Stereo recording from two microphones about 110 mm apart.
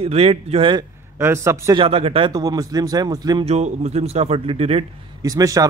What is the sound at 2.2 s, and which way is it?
Speech, 35° right (ahead or behind).